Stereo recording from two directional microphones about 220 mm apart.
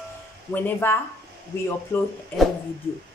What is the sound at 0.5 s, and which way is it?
Speech, 10° left (ahead or behind).